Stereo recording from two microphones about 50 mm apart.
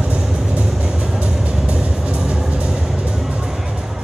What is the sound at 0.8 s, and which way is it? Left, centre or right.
Music, centre.